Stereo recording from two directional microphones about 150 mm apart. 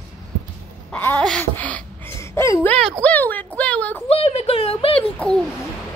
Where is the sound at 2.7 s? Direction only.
5° left (ahead or behind).